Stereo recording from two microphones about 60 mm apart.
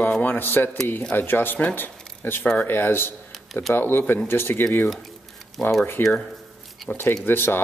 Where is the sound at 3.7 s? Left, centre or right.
Left.